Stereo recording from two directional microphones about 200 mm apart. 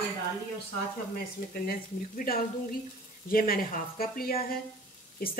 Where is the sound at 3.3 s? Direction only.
45° left (ahead or behind).